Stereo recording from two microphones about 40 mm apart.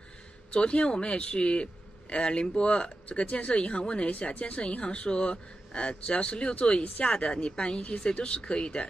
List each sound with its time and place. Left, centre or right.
0.5 s a man's voice: left